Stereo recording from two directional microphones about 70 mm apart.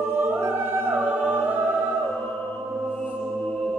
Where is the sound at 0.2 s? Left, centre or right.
Right.